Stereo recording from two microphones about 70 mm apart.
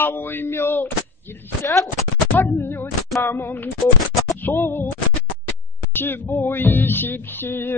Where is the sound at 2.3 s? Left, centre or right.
Left.